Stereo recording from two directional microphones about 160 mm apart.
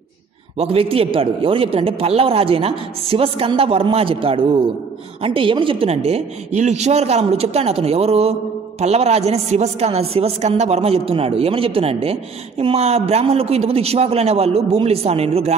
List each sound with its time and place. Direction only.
0.6 s a man's voice: 35° right (ahead or behind)